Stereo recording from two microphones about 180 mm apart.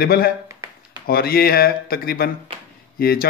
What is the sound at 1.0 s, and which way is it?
Speech, 55° left (ahead or behind).